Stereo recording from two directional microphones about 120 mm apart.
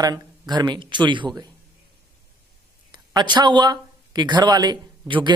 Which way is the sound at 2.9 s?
40° right (ahead or behind).